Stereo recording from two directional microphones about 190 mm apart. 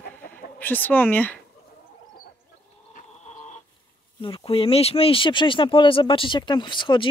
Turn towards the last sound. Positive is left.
turn(degrees=25)  # may be behind; listen again after turning